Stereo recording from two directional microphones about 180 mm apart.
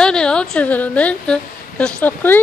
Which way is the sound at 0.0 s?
5° left (ahead or behind).